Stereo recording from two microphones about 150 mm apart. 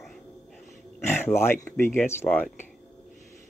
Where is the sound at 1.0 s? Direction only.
15° left (ahead or behind).